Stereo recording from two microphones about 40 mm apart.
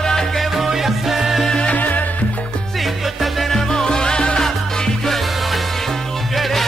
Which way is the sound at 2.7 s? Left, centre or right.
Centre.